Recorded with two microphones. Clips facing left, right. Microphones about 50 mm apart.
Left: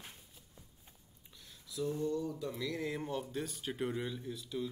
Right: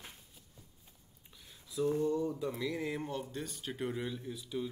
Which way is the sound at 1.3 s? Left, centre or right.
Centre.